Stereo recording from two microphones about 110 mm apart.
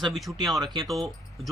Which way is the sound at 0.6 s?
40° right (ahead or behind).